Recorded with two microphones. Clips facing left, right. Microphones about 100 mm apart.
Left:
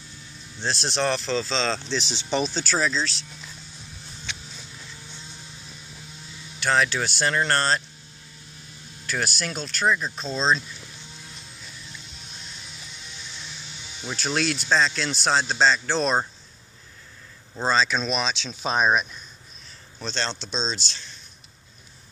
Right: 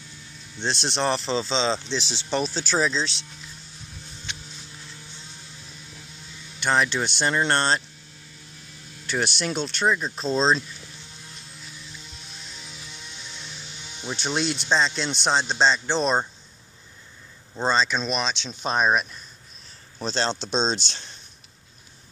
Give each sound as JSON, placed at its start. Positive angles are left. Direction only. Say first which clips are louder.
{"t": 0.7, "sound": "speech", "louder": "right 1 dB", "side_deg": 5}
{"t": 0.9, "sound": "speech", "louder": "even", "side_deg": -30}
{"t": 2.2, "sound": "speech", "louder": "left 1 dB", "side_deg": -5}
{"t": 2.6, "sound": "speech", "louder": "right 1 dB", "side_deg": -20}
{"t": 6.6, "sound": "speech", "louder": "even", "side_deg": -15}
{"t": 9.0, "sound": "speech", "louder": "right 2 dB", "side_deg": -25}
{"t": 10.1, "sound": "speech", "louder": "right 2 dB", "side_deg": -30}
{"t": 14.1, "sound": "speech", "louder": "left 1 dB", "side_deg": -25}
{"t": 15.1, "sound": "speech", "louder": "even", "side_deg": 5}
{"t": 15.7, "sound": "speech", "louder": "even", "side_deg": -20}
{"t": 17.6, "sound": "speech", "louder": "even", "side_deg": 5}
{"t": 20.0, "sound": "speech", "louder": "right 4 dB", "side_deg": -40}
{"t": 20.5, "sound": "speech", "louder": "right 5 dB", "side_deg": -55}